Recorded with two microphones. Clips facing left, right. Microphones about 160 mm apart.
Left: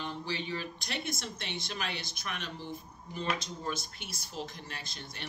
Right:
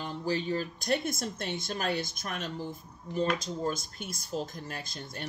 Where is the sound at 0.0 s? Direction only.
40° right (ahead or behind).